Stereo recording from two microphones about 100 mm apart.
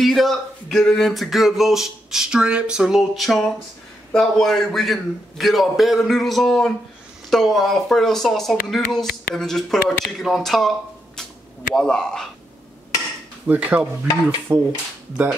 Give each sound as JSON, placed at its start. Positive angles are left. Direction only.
{"t": 0.0, "sound": "speech", "side_deg": 0}
{"t": 11.7, "sound": "speech", "side_deg": 5}
{"t": 13.5, "sound": "speech", "side_deg": -15}